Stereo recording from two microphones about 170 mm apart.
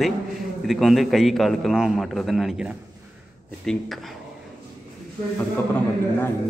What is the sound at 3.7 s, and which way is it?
Speech, centre (ahead or behind).